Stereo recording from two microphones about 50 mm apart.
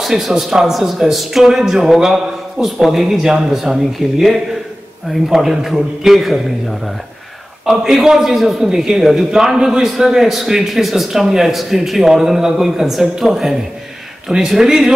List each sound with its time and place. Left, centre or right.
0.0 s a man's voice: centre
7.6 s a man's voice: centre